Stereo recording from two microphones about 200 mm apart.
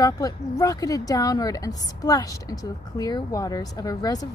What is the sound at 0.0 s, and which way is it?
A woman's voice, 15° left (ahead or behind).